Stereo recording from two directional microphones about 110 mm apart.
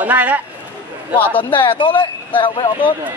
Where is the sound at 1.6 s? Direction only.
50° left (ahead or behind).